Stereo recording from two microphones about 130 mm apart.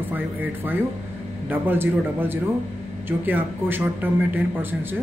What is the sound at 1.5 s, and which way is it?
Speech, 15° right (ahead or behind).